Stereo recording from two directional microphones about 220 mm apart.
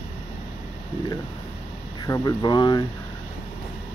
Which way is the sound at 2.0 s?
15° left (ahead or behind).